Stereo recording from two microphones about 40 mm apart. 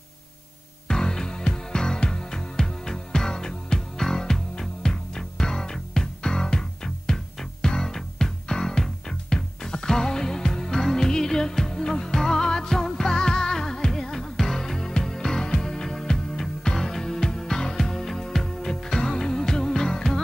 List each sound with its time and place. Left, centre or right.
0.8 s music: centre